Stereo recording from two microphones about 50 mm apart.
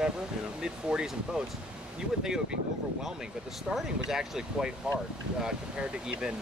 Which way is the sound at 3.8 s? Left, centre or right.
Centre.